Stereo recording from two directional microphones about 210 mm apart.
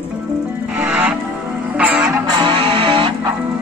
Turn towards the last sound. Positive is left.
turn(degrees=-25)  # may be behind; listen again after turning